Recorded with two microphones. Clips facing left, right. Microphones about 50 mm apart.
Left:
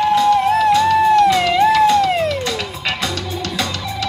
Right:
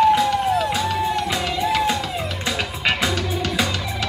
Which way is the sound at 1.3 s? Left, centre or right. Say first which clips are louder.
Left 9 dB; left.